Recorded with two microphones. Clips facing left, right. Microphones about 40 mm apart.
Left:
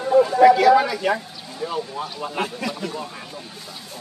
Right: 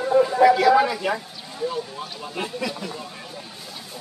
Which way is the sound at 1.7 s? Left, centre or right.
Left.